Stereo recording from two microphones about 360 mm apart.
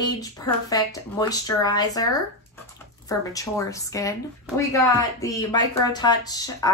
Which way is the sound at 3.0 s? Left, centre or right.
Centre.